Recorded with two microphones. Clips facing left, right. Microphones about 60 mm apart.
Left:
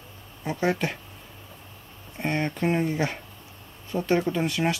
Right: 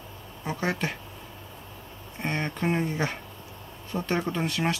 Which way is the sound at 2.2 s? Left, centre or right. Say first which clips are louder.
Left 3 dB; centre.